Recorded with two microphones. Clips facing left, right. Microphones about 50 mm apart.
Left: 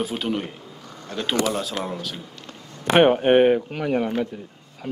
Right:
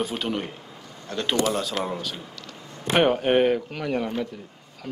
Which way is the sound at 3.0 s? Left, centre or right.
Centre.